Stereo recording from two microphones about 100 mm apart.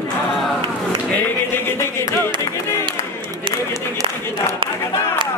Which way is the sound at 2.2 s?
25° left (ahead or behind).